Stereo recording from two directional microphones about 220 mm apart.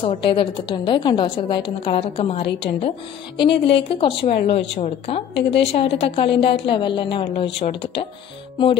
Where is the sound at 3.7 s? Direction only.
25° left (ahead or behind).